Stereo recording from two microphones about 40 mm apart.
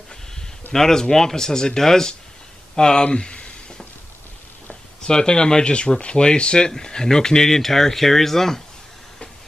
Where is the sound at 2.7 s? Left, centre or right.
Left.